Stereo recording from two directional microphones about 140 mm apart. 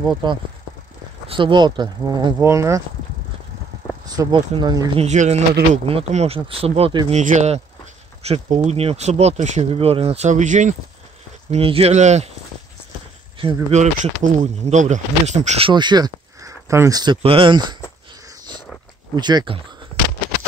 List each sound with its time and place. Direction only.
0.2 s speech: 35° right (ahead or behind)
2.3 s speech: 20° right (ahead or behind)
4.0 s speech: 30° right (ahead or behind)
4.9 s speech: 55° right (ahead or behind)
5.9 s speech: 45° right (ahead or behind)
7.1 s speech: 60° right (ahead or behind)
11.5 s speech: 45° right (ahead or behind)
13.7 s speech: 55° right (ahead or behind)
15.6 s speech: 30° right (ahead or behind)
17.0 s speech: 40° right (ahead or behind)
19.1 s speech: 30° right (ahead or behind)